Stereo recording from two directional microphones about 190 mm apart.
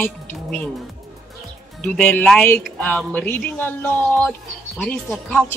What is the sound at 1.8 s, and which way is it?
A woman's voice, 10° left (ahead or behind).